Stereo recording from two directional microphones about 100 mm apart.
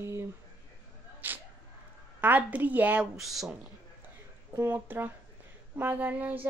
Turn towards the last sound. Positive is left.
turn(degrees=-15)  # may be behind; listen again after turning